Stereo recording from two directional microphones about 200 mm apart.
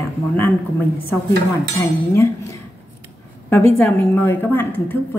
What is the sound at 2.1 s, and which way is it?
Speech, 15° left (ahead or behind).